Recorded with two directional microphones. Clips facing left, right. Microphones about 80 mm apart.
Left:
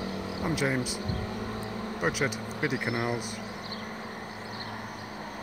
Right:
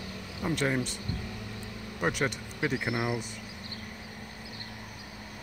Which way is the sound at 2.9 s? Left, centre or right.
Left.